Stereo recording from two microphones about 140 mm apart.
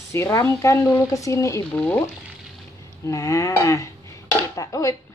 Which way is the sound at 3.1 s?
25° left (ahead or behind).